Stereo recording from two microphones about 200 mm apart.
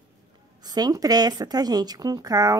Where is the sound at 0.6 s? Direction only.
20° right (ahead or behind).